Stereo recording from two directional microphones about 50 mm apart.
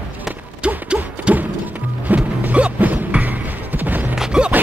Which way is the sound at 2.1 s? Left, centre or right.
Right.